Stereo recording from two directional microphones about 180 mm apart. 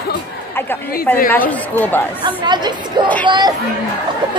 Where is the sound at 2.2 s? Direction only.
25° right (ahead or behind).